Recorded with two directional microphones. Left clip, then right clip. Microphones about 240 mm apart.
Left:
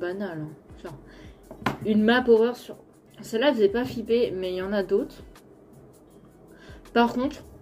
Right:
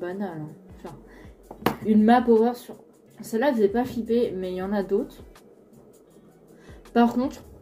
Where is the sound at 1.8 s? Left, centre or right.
Centre.